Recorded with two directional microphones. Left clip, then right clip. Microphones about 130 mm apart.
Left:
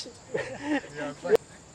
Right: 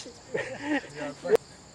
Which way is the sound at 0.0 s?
15° left (ahead or behind).